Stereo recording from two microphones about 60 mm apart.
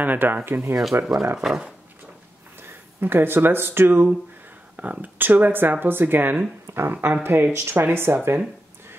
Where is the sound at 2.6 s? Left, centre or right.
Right.